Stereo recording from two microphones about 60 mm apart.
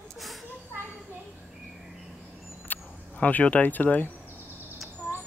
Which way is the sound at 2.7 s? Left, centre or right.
Left.